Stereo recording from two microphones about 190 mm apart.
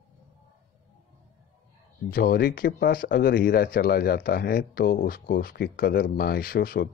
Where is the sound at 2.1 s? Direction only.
55° left (ahead or behind).